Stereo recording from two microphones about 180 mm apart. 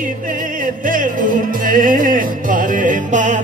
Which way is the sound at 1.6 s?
50° right (ahead or behind).